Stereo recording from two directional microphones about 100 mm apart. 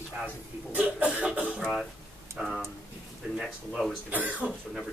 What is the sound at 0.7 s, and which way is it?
Cough, 15° right (ahead or behind).